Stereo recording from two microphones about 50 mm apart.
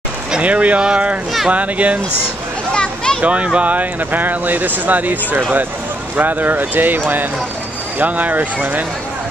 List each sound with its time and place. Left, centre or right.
0.4 s speech: right
2.7 s a sound: centre
3.2 s speech: right
8.0 s speech: right